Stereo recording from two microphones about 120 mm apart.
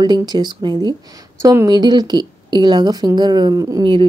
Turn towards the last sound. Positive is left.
turn(degrees=-30)  # may be behind; listen again after turning